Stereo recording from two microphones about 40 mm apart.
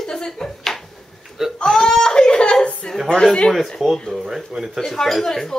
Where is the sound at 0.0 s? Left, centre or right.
Centre.